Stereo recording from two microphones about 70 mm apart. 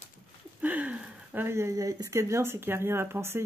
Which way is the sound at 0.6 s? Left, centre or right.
Right.